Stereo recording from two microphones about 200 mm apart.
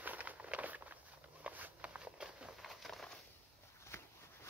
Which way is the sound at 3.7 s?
15° left (ahead or behind).